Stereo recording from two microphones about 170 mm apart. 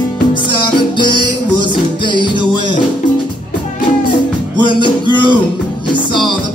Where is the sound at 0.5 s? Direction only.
30° left (ahead or behind).